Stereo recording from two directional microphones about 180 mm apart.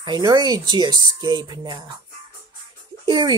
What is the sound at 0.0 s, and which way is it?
Speech, 25° right (ahead or behind).